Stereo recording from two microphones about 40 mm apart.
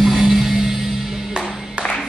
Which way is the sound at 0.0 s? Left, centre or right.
Centre.